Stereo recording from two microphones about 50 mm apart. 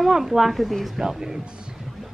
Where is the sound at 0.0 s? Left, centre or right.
Centre.